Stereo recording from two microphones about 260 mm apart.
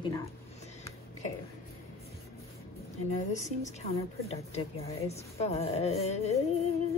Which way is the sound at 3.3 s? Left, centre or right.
Left.